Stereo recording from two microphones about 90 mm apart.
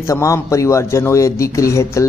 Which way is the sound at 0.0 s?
35° left (ahead or behind).